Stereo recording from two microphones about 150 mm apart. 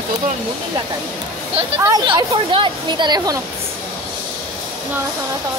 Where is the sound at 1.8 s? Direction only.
30° right (ahead or behind).